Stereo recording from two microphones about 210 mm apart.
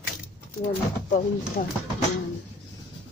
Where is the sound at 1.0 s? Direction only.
40° left (ahead or behind).